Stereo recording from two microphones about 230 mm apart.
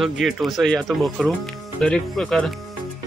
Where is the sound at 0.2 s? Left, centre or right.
Centre.